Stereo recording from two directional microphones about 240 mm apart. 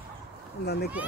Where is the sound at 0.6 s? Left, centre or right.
Left.